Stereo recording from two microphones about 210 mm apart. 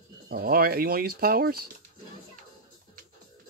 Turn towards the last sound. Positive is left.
turn(degrees=-45)  # may be behind; listen again after turning